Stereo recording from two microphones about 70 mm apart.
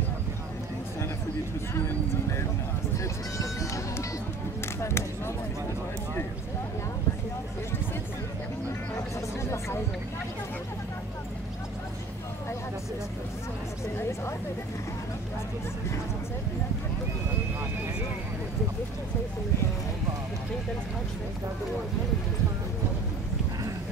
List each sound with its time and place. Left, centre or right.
3.0 s music: left
4.7 s a sound: left
9.4 s music: left